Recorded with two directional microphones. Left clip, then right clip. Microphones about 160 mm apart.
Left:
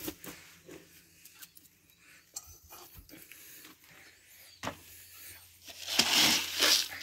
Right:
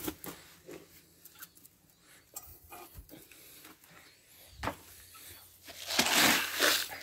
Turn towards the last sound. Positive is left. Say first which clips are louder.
# even
turn(degrees=-10)  # may be behind; listen again after turning